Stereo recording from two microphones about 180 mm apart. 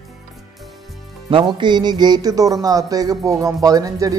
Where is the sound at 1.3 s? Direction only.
25° right (ahead or behind).